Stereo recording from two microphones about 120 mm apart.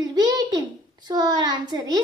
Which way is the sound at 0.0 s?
35° right (ahead or behind).